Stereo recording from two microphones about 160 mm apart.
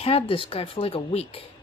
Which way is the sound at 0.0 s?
35° left (ahead or behind).